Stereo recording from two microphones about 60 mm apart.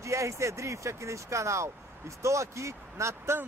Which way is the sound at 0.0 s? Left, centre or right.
Right.